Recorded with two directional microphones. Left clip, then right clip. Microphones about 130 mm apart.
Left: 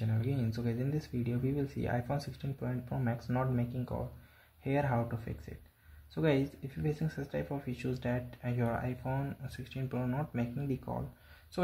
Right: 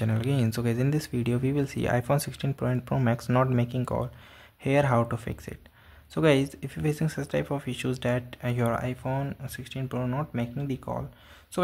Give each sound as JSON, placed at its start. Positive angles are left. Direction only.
{"t": 0.0, "sound": "speech", "side_deg": -40}